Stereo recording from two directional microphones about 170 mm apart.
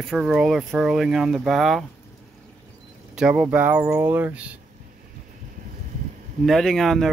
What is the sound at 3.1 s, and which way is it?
Speech, 5° right (ahead or behind).